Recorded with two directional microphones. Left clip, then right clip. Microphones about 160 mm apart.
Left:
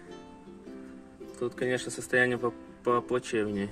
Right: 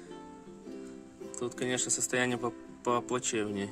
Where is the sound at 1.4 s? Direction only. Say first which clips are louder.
Left 3 dB; 25° right (ahead or behind).